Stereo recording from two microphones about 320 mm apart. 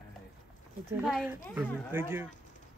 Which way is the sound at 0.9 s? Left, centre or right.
Centre.